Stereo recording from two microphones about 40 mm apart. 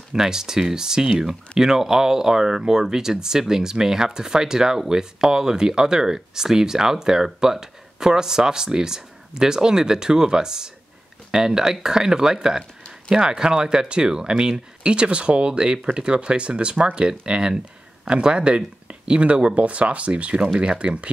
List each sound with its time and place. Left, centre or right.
0.1 s speech: centre